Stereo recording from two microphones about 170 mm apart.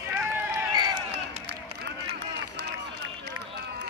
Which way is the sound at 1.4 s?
85° right.